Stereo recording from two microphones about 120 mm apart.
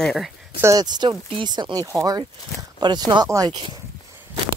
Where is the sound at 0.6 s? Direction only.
35° right (ahead or behind).